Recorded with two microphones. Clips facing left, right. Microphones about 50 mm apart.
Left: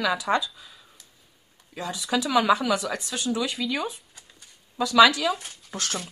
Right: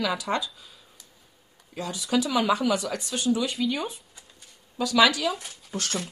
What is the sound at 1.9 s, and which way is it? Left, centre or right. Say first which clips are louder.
Speech: left 2 dB; centre.